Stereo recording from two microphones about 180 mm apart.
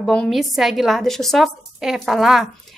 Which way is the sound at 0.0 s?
Centre (ahead or behind).